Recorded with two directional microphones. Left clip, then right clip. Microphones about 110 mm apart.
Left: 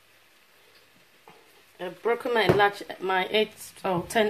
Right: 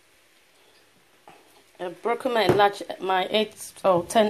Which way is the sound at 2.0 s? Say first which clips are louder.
Right 1 dB; 25° right (ahead or behind).